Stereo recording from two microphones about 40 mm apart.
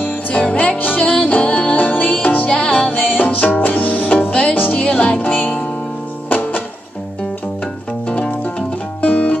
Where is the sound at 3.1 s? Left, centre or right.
Left.